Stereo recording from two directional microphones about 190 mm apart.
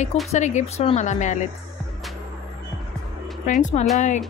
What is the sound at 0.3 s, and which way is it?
Speech, 35° left (ahead or behind).